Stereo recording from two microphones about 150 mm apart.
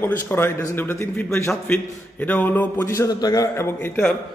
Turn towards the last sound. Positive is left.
turn(degrees=15)  # may be behind; listen again after turning